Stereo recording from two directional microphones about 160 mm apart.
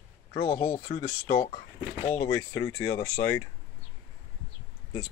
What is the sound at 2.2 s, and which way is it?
Speech, 20° left (ahead or behind).